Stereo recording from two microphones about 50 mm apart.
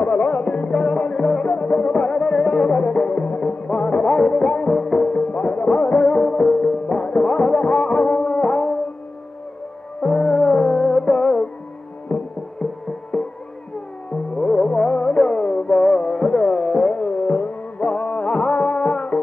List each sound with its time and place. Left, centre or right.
0.0 s music: left
6.2 s music: centre
10.0 s music: centre
14.4 s music: centre